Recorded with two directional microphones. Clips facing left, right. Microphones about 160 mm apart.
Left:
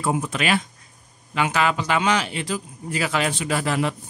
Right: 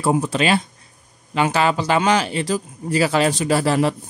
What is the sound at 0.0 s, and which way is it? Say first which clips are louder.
Speech: right 5 dB; 30° right (ahead or behind).